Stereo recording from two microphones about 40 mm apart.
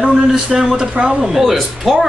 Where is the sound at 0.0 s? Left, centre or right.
Centre.